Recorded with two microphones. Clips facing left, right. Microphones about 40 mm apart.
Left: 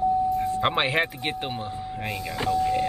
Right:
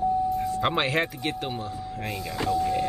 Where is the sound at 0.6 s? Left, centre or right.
Centre.